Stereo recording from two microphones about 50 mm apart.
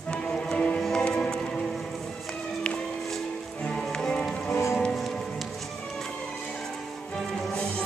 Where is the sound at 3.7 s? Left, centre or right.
Centre.